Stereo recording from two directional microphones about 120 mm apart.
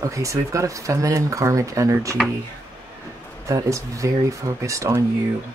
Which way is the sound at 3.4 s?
25° right (ahead or behind).